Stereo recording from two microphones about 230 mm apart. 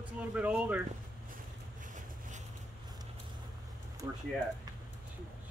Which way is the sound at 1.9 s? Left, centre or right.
Right.